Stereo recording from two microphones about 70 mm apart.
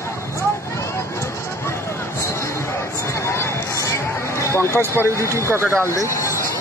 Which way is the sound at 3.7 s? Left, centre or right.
Left.